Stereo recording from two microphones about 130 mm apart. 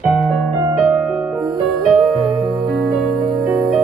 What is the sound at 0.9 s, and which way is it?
Music, 10° right (ahead or behind).